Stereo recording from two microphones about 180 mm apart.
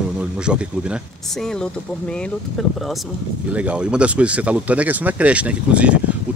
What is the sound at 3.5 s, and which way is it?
Speech, 5° right (ahead or behind).